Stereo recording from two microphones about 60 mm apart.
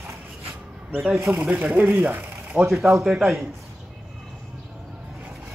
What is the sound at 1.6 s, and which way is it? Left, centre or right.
Speech, right.